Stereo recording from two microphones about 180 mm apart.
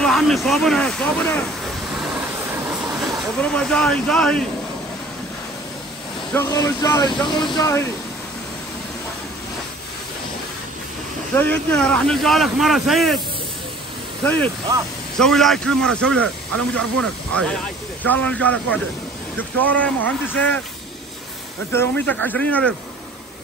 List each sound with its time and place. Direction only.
0.0 s speech: centre (ahead or behind)
3.5 s speech: 5° left (ahead or behind)
6.3 s speech: 20° left (ahead or behind)
11.3 s speech: 10° left (ahead or behind)
14.2 s speech: 10° left (ahead or behind)
21.7 s speech: 10° left (ahead or behind)